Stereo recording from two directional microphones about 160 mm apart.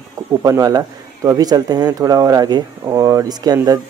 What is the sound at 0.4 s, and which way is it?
A man's voice, 20° right (ahead or behind).